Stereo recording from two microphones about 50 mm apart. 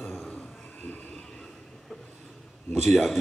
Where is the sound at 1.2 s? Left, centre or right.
Centre.